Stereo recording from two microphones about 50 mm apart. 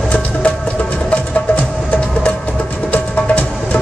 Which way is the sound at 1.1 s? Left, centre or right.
Left.